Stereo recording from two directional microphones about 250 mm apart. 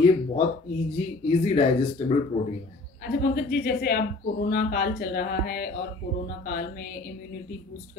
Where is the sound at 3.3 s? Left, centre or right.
Left.